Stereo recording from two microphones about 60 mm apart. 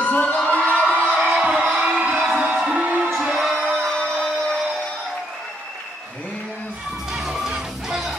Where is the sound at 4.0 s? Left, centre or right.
Centre.